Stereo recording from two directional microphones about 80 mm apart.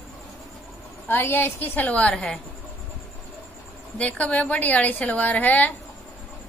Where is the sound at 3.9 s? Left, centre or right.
Centre.